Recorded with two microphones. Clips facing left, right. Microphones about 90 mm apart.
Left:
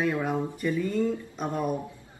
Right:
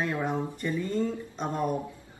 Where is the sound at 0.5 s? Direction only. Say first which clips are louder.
Left 2 dB; 5° left (ahead or behind).